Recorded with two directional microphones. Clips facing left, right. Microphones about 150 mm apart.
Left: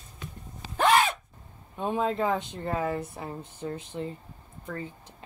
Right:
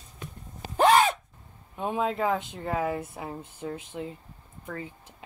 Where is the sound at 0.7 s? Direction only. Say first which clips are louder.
Right 3 dB; 30° right (ahead or behind).